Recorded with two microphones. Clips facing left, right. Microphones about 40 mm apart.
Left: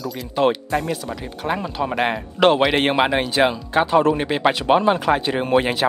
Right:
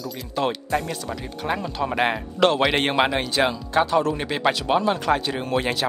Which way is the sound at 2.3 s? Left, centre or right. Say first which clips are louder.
Left 4 dB; centre.